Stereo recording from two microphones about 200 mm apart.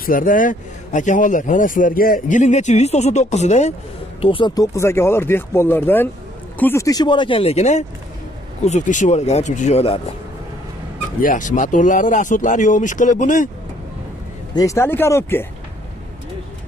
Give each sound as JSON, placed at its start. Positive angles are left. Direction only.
{"t": 0.0, "sound": "a man's voice", "side_deg": 45}
{"t": 4.2, "sound": "a man's voice", "side_deg": 25}
{"t": 11.1, "sound": "a man's voice", "side_deg": 40}
{"t": 14.5, "sound": "speech", "side_deg": 15}